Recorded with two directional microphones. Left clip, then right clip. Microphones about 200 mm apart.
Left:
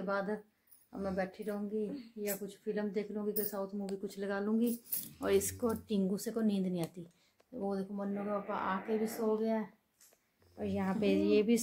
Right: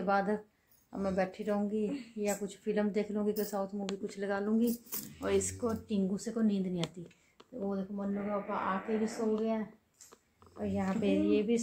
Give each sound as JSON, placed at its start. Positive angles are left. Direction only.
{"t": 0.0, "sound": "speech", "side_deg": -15}
{"t": 3.5, "sound": "speech", "side_deg": 0}
{"t": 4.0, "sound": "speech", "side_deg": 10}
{"t": 5.2, "sound": "a woman's voice", "side_deg": 35}
{"t": 10.6, "sound": "speech", "side_deg": 50}